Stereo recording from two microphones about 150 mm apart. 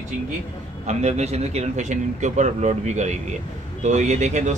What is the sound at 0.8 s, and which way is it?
Speech, 50° right (ahead or behind).